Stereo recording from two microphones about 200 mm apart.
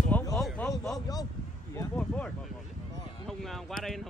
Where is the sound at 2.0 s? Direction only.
5° left (ahead or behind).